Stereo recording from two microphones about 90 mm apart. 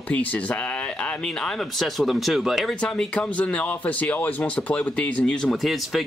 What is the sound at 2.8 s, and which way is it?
Speech, 15° left (ahead or behind).